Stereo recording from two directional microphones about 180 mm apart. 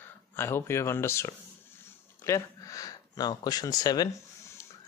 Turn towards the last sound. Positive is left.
turn(degrees=20)  # may be behind; listen again after turning